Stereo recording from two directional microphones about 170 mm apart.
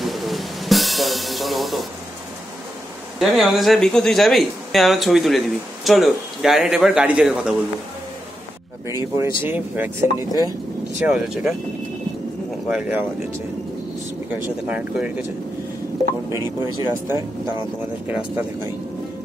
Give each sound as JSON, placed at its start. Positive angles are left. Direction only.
{"t": 0.0, "sound": "music", "side_deg": 0}
{"t": 3.2, "sound": "speech", "side_deg": 0}
{"t": 8.8, "sound": "speech", "side_deg": -15}
{"t": 11.1, "sound": "speech", "side_deg": -5}
{"t": 12.4, "sound": "a sound", "side_deg": -5}
{"t": 14.3, "sound": "speech", "side_deg": -10}
{"t": 16.3, "sound": "speech", "side_deg": -15}